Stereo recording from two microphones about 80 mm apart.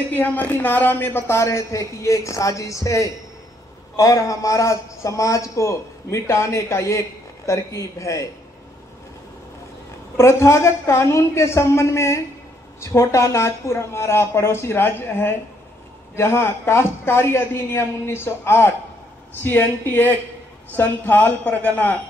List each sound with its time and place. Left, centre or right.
0.1 s a man's voice: left
10.1 s a man's voice: left